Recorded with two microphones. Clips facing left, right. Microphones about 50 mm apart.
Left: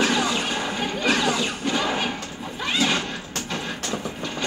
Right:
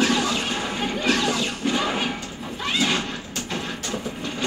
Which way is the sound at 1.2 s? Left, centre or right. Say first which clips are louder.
Left 1 dB; left.